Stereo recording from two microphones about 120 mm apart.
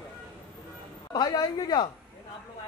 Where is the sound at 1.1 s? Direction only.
30° left (ahead or behind).